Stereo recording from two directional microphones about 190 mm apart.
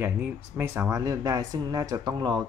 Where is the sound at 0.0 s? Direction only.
10° right (ahead or behind).